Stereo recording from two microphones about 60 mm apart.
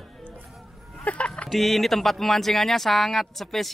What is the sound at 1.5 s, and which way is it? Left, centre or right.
Speech, centre.